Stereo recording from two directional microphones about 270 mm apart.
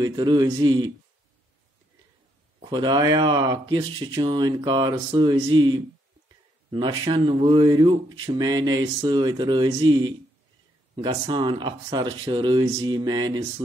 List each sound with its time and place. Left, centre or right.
0.0 s speech: centre
2.6 s speech: centre